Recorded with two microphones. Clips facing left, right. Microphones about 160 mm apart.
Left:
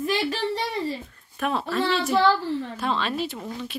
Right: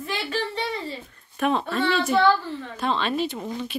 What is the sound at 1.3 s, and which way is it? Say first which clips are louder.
Speech: right 2 dB; centre (ahead or behind).